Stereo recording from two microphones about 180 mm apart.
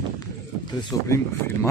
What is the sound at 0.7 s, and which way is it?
Speech, 25° left (ahead or behind).